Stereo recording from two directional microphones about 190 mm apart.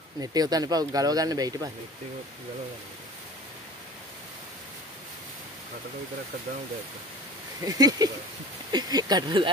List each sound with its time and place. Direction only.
0.2 s speech: 20° right (ahead or behind)
7.6 s speech: 20° right (ahead or behind)